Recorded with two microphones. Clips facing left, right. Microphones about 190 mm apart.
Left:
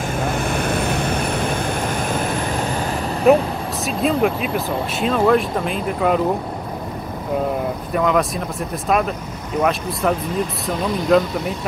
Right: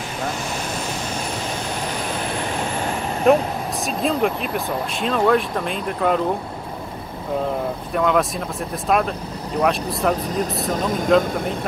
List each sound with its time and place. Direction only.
0.4 s vehicle: 60° left (ahead or behind)
3.3 s speech: 5° left (ahead or behind)
7.9 s speech: centre (ahead or behind)
10.3 s speech: 45° right (ahead or behind)
11.1 s speech: centre (ahead or behind)